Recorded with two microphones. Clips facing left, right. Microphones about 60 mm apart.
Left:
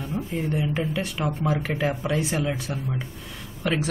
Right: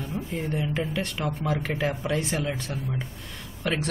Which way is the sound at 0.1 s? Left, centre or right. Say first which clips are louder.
Left 4 dB; centre.